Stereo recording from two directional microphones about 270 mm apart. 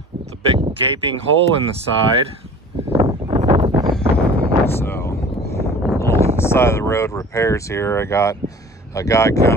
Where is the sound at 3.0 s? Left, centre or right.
Centre.